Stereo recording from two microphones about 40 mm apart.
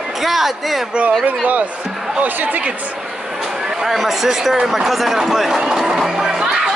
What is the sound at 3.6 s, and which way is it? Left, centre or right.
Speech, centre.